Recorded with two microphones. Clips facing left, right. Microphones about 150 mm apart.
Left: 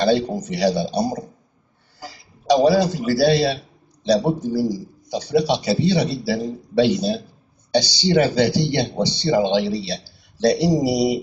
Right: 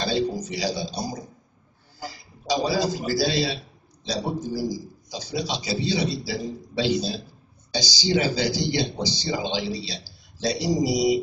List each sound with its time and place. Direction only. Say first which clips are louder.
0.0 s speech: left 6 dB; 60° left (ahead or behind)
2.4 s speech: left 8 dB; 60° left (ahead or behind)